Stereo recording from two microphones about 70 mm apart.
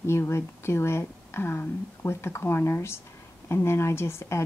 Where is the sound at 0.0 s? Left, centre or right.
Left.